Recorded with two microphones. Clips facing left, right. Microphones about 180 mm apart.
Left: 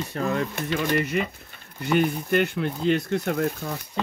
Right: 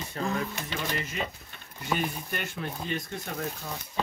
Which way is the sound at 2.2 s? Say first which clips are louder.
Left 12 dB; 65° left (ahead or behind).